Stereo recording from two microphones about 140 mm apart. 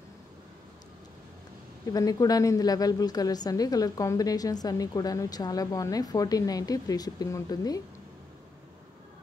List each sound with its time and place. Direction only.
1.9 s a woman's voice: 25° left (ahead or behind)